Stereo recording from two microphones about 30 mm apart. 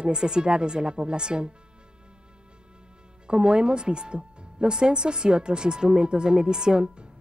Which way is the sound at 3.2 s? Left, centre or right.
Right.